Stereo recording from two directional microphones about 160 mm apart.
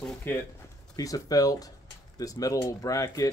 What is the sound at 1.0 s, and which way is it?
Speech, 20° left (ahead or behind).